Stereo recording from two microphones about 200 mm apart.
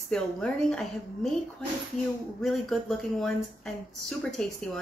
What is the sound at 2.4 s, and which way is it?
Speech, centre (ahead or behind).